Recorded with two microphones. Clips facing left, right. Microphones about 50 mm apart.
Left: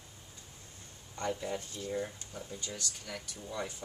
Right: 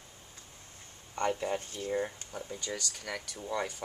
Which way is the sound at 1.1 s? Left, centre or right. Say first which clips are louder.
Right 4 dB; right.